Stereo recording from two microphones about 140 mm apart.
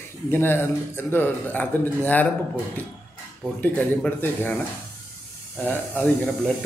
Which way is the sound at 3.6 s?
15° left (ahead or behind).